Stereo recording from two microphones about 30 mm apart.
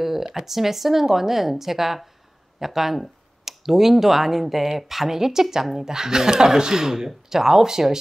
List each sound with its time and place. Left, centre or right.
0.0 s speech: centre